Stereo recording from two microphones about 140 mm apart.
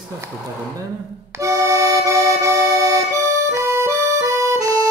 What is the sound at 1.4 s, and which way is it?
Accordion, 20° right (ahead or behind).